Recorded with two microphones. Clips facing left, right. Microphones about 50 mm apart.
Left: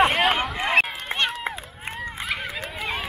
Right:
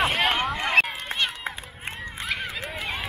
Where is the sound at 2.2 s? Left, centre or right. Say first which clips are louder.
Even; centre.